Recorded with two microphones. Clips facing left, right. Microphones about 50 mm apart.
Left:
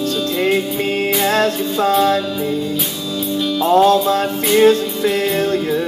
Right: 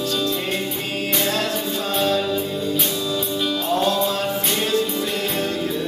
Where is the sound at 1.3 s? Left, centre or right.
Left.